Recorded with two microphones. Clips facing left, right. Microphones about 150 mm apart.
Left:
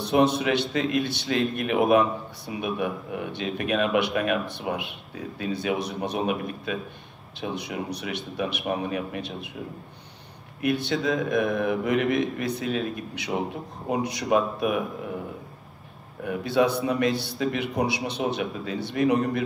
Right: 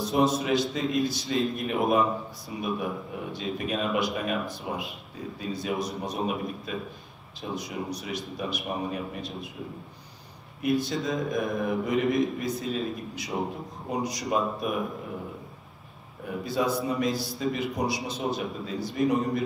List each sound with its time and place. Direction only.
0.0 s a man's voice: centre (ahead or behind)
10.6 s a man's voice: centre (ahead or behind)
16.6 s a man's voice: 65° left (ahead or behind)
16.9 s a man's voice: centre (ahead or behind)